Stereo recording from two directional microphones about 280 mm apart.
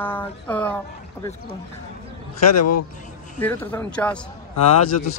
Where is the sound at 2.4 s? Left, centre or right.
Left.